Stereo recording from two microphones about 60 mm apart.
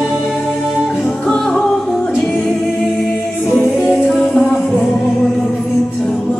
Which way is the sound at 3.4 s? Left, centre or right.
Centre.